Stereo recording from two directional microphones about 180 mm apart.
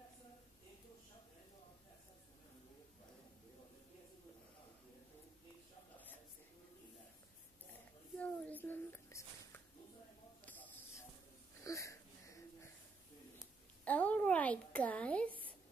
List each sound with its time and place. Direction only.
8.2 s a child's voice: 10° left (ahead or behind)
10.4 s a sound: 10° left (ahead or behind)
11.6 s wheeze: 15° left (ahead or behind)
13.8 s speech: 10° left (ahead or behind)